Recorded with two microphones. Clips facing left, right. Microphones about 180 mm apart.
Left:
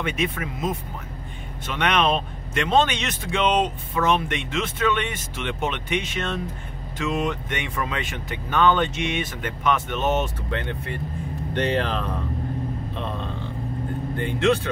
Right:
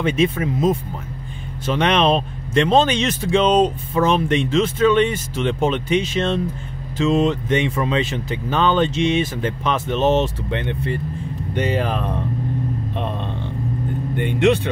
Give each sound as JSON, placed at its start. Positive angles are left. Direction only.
{"t": 0.0, "sound": "speech", "side_deg": -30}
{"t": 11.5, "sound": "speech", "side_deg": -10}
{"t": 14.1, "sound": "speech", "side_deg": -20}